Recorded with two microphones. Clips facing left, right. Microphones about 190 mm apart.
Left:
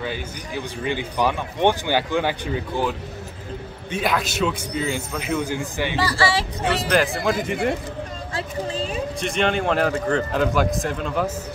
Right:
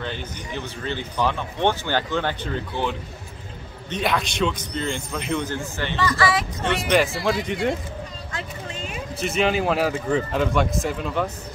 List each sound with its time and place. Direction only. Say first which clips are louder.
0.0 s a man's voice: left 2 dB; 10° left (ahead or behind)
5.9 s speech: right 1 dB; 30° left (ahead or behind)
6.6 s a man's voice: even; centre (ahead or behind)
8.3 s a sound: left 9 dB; 35° left (ahead or behind)
9.2 s a man's voice: right 2 dB; 5° right (ahead or behind)